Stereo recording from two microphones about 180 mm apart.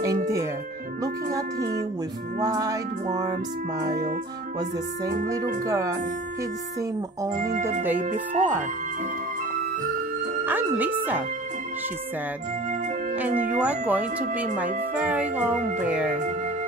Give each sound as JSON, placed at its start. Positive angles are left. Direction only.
{"t": 1.6, "sound": "speech", "side_deg": -60}
{"t": 2.4, "sound": "music", "side_deg": -20}
{"t": 5.0, "sound": "speech", "side_deg": -50}
{"t": 5.7, "sound": "speech", "side_deg": -20}
{"t": 7.2, "sound": "speech", "side_deg": -45}
{"t": 10.4, "sound": "speech", "side_deg": -10}
{"t": 13.6, "sound": "speech", "side_deg": -10}
{"t": 15.0, "sound": "music", "side_deg": -10}
{"t": 15.8, "sound": "speech", "side_deg": -5}